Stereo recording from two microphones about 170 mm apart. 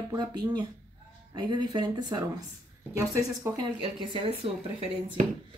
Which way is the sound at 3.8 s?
30° right (ahead or behind).